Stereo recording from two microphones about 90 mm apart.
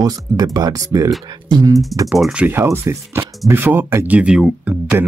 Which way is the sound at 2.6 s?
35° right (ahead or behind).